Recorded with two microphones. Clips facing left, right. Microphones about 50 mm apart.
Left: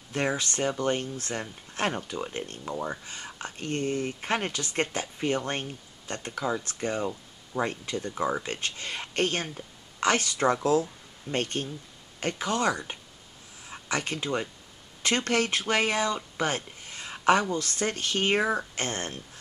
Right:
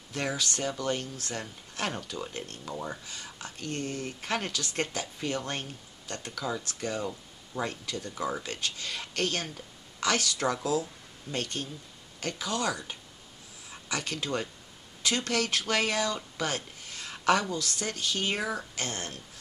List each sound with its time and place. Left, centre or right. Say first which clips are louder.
0.1 s speech: left 3 dB; left
2.7 s speech: left 4 dB; centre
3.3 s speech: left 4 dB; left
10.6 s speech: left 5 dB; left
15.0 s speech: left 3 dB; left